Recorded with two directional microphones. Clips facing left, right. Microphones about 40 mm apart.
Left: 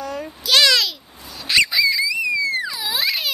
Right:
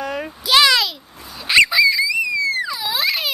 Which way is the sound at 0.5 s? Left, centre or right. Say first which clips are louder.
Right 2 dB; centre.